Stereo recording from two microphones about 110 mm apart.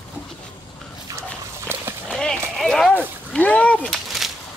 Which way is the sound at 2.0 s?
5° left (ahead or behind).